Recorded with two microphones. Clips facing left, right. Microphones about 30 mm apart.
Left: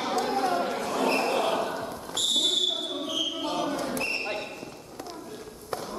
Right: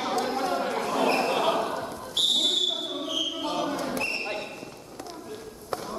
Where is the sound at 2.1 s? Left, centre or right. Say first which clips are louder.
Right 2 dB; centre.